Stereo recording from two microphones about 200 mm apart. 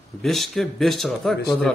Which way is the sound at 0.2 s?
Centre (ahead or behind).